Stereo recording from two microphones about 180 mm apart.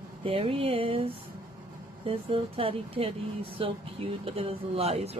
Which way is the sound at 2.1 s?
30° right (ahead or behind).